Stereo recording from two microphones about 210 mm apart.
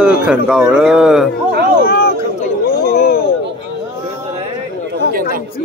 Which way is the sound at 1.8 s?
45° left (ahead or behind).